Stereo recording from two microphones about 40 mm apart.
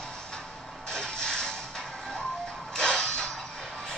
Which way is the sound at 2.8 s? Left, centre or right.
Centre.